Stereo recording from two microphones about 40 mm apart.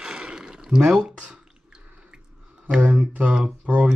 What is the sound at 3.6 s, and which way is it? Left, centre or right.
Speech, right.